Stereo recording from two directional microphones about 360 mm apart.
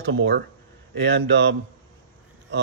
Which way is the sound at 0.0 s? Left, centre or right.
Right.